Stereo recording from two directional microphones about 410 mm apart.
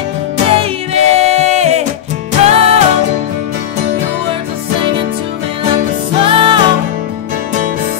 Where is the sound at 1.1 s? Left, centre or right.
Centre.